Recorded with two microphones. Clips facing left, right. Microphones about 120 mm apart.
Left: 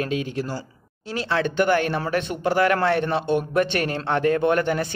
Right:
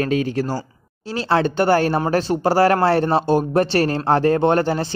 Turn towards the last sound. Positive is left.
turn(degrees=-30)  # may be behind; listen again after turning